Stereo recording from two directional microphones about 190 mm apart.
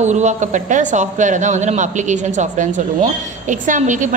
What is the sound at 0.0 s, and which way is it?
Speech, 40° right (ahead or behind).